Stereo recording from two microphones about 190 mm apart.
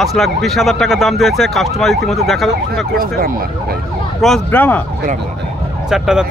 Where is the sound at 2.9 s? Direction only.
50° right (ahead or behind).